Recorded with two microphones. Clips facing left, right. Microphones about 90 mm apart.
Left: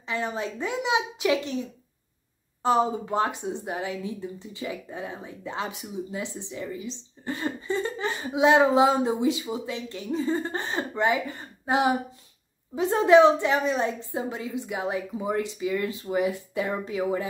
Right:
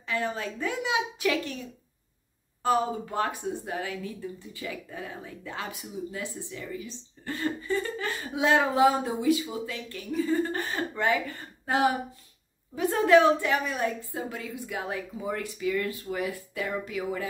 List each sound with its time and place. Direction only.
0.0 s speech: 20° left (ahead or behind)
2.6 s speech: 20° left (ahead or behind)